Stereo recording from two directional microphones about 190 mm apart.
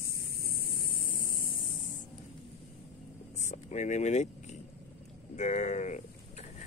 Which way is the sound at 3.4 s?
40° left (ahead or behind).